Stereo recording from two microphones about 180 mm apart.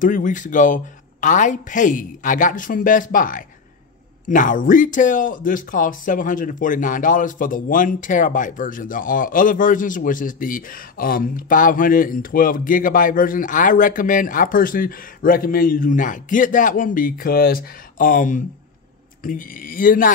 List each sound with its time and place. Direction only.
0.0 s speech: 45° left (ahead or behind)